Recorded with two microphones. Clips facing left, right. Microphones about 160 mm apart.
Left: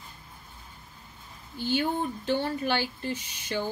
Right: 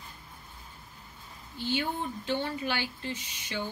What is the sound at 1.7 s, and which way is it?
A woman's voice, 45° left (ahead or behind).